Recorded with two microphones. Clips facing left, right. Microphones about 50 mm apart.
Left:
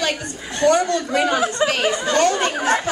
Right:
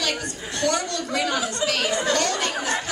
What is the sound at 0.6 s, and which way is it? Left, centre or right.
A woman's voice, left.